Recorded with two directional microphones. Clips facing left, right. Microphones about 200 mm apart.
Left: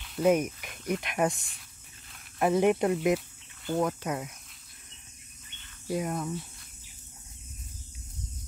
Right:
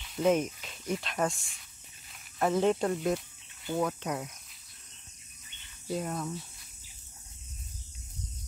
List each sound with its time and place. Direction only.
0.0 s speech: 5° left (ahead or behind)
5.9 s speech: 5° left (ahead or behind)